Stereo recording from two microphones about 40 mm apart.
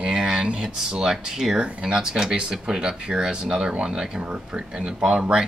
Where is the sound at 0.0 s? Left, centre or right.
Right.